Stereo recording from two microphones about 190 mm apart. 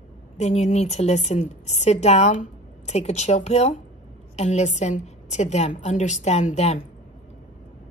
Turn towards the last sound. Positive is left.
turn(degrees=35)  # may be behind; listen again after turning